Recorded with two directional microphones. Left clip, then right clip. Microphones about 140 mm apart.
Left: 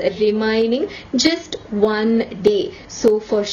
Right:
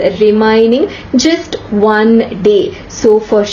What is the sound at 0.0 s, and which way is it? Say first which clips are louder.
A woman's voice: right 9 dB; 30° left (ahead or behind).